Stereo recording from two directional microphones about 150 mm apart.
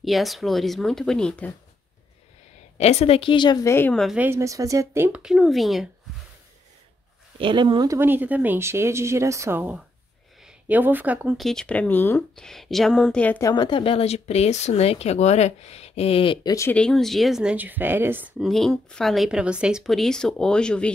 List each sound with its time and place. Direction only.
0.0 s speech: centre (ahead or behind)
2.8 s a woman's voice: 45° left (ahead or behind); by 3.9 s 15° left (ahead or behind)
3.9 s speech: centre (ahead or behind)
4.2 s speech: 15° right (ahead or behind); by 5.9 s centre (ahead or behind)
7.3 s speech: 30° right (ahead or behind)
8.0 s speech: 15° right (ahead or behind)
11.3 s speech: 5° left (ahead or behind)
13.4 s speech: 25° left (ahead or behind)
16.4 s speech: 20° left (ahead or behind)
16.7 s speech: 5° left (ahead or behind); by 18.3 s 15° right (ahead or behind)
18.4 s speech: centre (ahead or behind)